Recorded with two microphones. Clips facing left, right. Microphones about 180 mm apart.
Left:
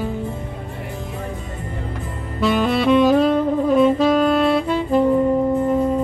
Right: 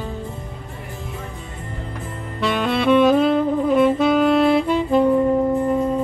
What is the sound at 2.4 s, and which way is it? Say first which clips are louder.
Saxophone: left 2 dB; centre (ahead or behind).